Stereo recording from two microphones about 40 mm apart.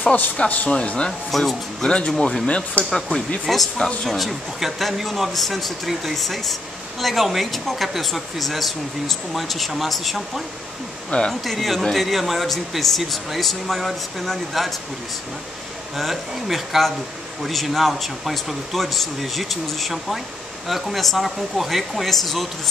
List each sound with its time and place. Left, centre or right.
0.0 s a man's voice: left
0.7 s speech: left
1.3 s speech: centre
1.8 s speech: left
2.8 s speech: centre
11.1 s speech: left
11.4 s speech: centre
16.0 s speech: centre